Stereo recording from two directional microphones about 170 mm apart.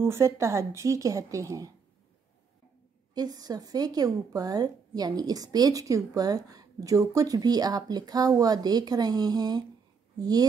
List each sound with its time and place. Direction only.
0.0 s speech: 15° right (ahead or behind)
3.2 s speech: 20° right (ahead or behind)